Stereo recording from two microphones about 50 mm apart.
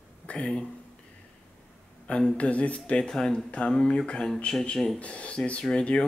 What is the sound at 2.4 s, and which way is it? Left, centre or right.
Speech, left.